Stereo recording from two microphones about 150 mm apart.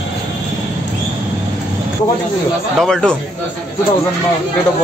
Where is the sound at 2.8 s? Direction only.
5° left (ahead or behind).